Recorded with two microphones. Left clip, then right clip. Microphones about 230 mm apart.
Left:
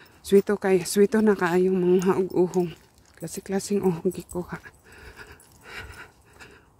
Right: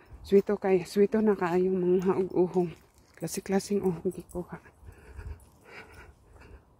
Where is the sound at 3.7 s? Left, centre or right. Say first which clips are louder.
Left 5 dB; centre.